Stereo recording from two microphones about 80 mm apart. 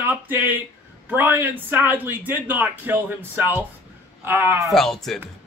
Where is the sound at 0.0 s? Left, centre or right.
Right.